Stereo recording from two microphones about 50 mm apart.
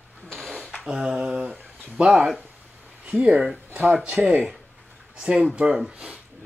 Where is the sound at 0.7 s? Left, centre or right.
Centre.